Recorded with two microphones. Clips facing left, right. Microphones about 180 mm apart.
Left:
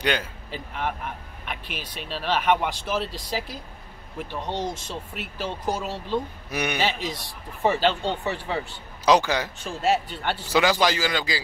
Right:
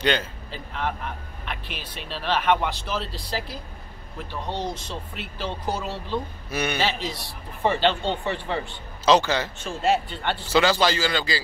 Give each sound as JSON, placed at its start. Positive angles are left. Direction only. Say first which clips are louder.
{"t": 0.0, "sound": "a man's voice", "louder": "right 2 dB", "side_deg": 10}
{"t": 4.2, "sound": "a man's voice", "louder": "left 1 dB", "side_deg": 15}
{"t": 4.6, "sound": "speech", "louder": "even", "side_deg": 45}
{"t": 5.4, "sound": "a man's voice", "louder": "left 1 dB", "side_deg": 10}
{"t": 9.7, "sound": "a man's voice", "louder": "right 1 dB", "side_deg": 0}